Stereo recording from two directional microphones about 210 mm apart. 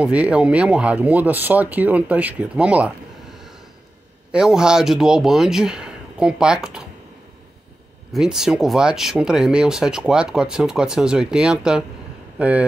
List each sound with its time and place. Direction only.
0.0 s speech: 5° right (ahead or behind)
4.3 s speech: 5° right (ahead or behind)
8.1 s speech: 5° right (ahead or behind)